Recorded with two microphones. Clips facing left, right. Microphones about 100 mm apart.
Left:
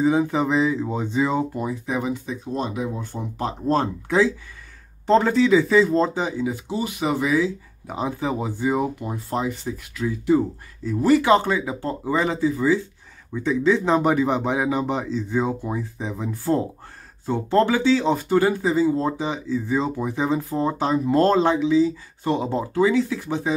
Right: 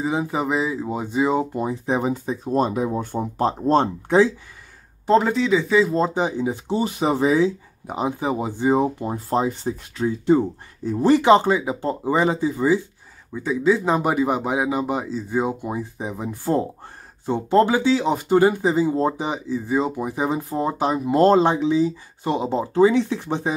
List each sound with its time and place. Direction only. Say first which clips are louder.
0.0 s speech: left 3 dB; 10° right (ahead or behind); by 4.3 s 25° right (ahead or behind)
5.0 s speech: left 1 dB; 5° right (ahead or behind)
5.9 s speech: right 1 dB; 15° right (ahead or behind)
13.3 s speech: even; 5° right (ahead or behind); by 23.5 s 25° right (ahead or behind)